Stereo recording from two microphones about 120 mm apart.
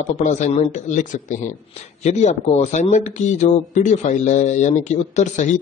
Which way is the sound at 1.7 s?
70° left (ahead or behind).